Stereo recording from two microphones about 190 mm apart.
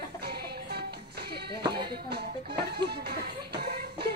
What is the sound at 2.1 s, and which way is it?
Music, 55° right (ahead or behind).